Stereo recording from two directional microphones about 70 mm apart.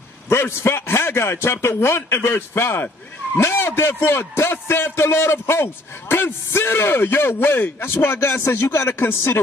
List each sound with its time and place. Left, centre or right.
0.3 s a man's voice: left